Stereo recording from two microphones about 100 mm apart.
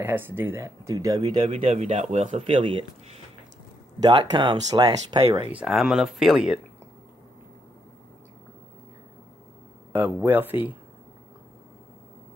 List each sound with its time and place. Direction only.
0.0 s speech: 25° right (ahead or behind); by 1.4 s 45° right (ahead or behind)
1.5 s speech: 90° right
4.0 s speech: 45° right (ahead or behind)
5.7 s speech: centre (ahead or behind)
10.2 s speech: 20° right (ahead or behind)